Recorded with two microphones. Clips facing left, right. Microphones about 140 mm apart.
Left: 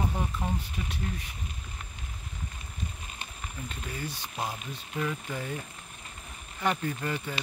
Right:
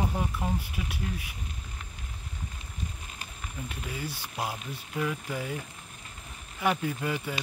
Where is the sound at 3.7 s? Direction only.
10° right (ahead or behind).